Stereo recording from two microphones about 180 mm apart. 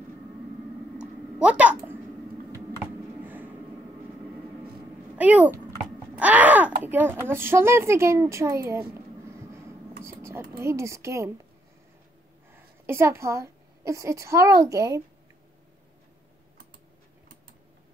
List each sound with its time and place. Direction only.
0.9 s a sound: 5° right (ahead or behind)
5.1 s speech: 10° right (ahead or behind)
6.1 s wail: 10° right (ahead or behind)
7.2 s a woman's voice: 10° right (ahead or behind)
10.6 s a woman's voice: 15° right (ahead or behind)
12.8 s a woman's voice: 15° right (ahead or behind)